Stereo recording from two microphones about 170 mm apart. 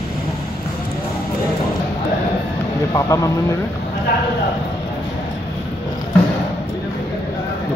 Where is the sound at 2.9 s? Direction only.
20° left (ahead or behind).